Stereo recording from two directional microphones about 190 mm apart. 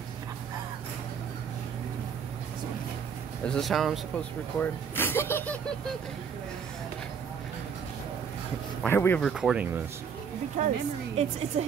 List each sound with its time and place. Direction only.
3.4 s speech: centre (ahead or behind)
8.8 s speech: 10° left (ahead or behind)
9.3 s speech: 5° right (ahead or behind)
10.6 s a woman's voice: 40° right (ahead or behind)